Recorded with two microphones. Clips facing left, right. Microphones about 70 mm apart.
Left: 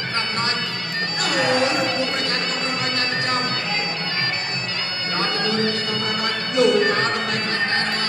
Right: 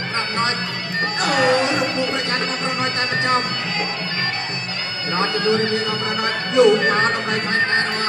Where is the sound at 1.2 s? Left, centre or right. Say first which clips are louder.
Right 3 dB; right.